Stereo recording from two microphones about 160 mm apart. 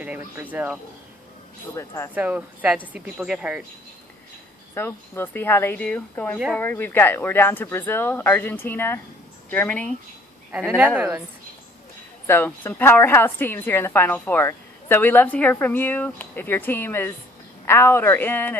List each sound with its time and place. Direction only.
0.0 s speech: 10° right (ahead or behind)
1.8 s a woman's voice: 15° left (ahead or behind)
2.1 s speech: 10° right (ahead or behind)
4.7 s a woman's voice: 15° left (ahead or behind)
6.6 s a woman's voice: 15° left (ahead or behind)
12.3 s a woman's voice: 15° left (ahead or behind)